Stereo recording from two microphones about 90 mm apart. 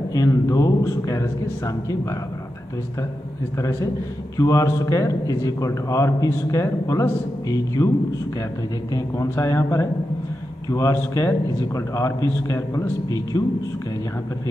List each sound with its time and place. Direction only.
0.1 s a man's voice: 40° left (ahead or behind)
3.5 s a man's voice: 35° left (ahead or behind)
8.9 s a man's voice: 35° left (ahead or behind)